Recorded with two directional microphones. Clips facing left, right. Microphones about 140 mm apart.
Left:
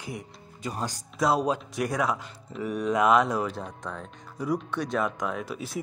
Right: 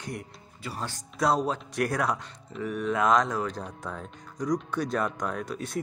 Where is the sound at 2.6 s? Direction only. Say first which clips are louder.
Left 2 dB; 15° left (ahead or behind); by 4.1 s 5° right (ahead or behind).